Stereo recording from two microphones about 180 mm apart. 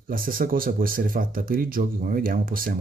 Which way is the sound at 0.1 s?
50° right (ahead or behind).